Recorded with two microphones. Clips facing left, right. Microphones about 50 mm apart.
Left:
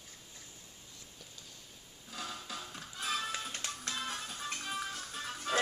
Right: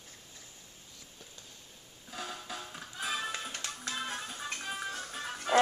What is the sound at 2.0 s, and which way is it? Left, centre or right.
Music, centre.